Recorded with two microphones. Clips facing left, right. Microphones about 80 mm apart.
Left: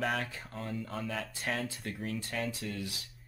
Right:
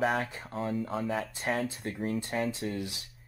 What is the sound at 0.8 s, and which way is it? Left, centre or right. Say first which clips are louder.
Speech: right 6 dB; centre.